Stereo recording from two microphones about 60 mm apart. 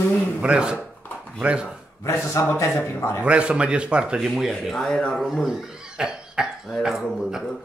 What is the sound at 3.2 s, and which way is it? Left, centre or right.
Speech, centre.